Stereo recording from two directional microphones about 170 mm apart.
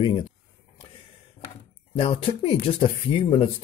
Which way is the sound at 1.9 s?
30° left (ahead or behind).